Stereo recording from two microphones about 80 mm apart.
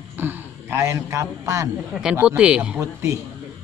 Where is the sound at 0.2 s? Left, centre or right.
Right.